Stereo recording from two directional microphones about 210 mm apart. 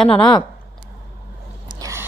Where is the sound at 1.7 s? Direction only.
15° right (ahead or behind).